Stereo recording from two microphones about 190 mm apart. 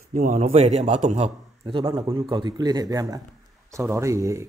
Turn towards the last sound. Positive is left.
turn(degrees=-15)  # may be behind; listen again after turning